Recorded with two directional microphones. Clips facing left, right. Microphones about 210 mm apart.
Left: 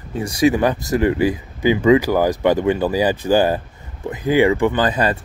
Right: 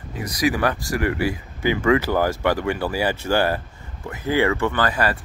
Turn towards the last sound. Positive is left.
turn(degrees=20)  # may be behind; listen again after turning